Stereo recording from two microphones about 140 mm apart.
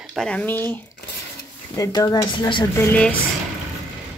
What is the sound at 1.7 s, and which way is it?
Speech, 25° left (ahead or behind).